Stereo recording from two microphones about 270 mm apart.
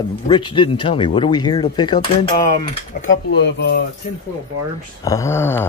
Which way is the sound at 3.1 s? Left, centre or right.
Left.